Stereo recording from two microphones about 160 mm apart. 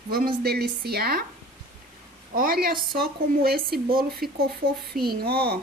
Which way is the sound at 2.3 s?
65° right (ahead or behind).